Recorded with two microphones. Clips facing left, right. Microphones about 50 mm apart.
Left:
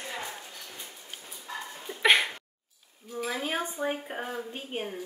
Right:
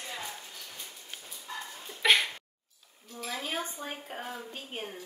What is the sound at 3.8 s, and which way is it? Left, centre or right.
Speech, left.